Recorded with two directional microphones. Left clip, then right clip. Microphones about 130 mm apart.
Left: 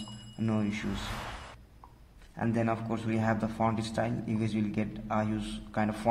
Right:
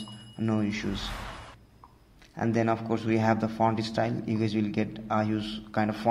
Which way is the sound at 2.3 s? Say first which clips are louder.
Right 4 dB; 15° right (ahead or behind).